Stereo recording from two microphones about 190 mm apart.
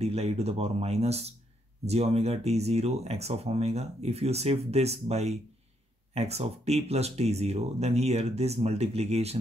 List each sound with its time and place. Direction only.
0.0 s speech: 35° right (ahead or behind)